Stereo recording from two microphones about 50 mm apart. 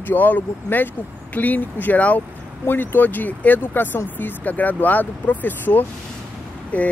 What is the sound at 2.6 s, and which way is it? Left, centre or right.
Speech, left.